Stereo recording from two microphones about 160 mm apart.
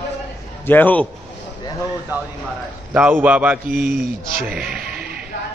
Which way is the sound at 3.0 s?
10° right (ahead or behind).